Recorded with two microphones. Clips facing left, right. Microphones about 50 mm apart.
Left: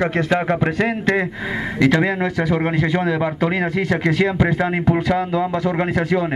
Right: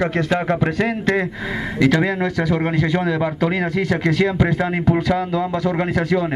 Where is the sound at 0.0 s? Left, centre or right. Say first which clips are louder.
Left 1 dB; left.